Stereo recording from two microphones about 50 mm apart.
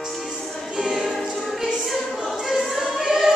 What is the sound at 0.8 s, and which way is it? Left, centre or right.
Music, centre.